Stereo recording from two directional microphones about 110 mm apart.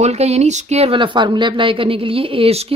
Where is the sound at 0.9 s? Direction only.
50° right (ahead or behind).